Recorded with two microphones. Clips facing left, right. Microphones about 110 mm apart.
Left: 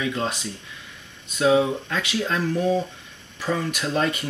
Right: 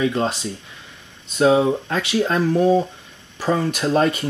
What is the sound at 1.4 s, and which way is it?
Speech, 35° right (ahead or behind).